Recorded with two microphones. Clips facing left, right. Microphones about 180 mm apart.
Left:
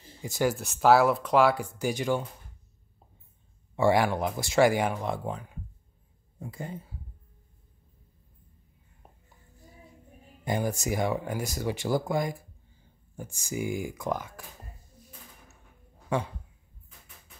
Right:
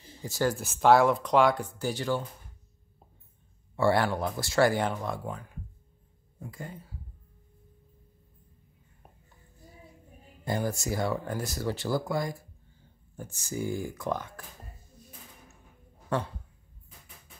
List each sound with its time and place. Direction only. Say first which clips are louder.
0.2 s speech: left 1 dB; 15° left (ahead or behind)
0.6 s speech: even; centre (ahead or behind); by 2.2 s 15° left (ahead or behind)
3.7 s speech: left 2 dB; 15° left (ahead or behind)
10.4 s speech: left 1 dB; 15° left (ahead or behind)
16.1 s speech: left 1 dB; 10° left (ahead or behind)